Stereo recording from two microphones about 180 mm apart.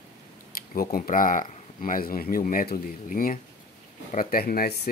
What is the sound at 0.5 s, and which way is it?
Speech, 55° left (ahead or behind).